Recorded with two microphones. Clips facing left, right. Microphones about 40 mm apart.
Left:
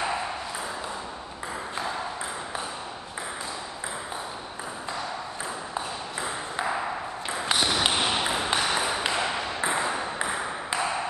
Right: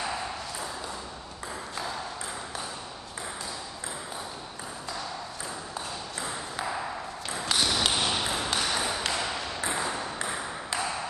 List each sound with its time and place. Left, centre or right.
0.0 s ping: left
5.8 s ping: centre